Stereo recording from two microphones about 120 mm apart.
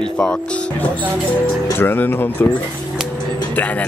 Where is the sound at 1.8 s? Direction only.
20° left (ahead or behind).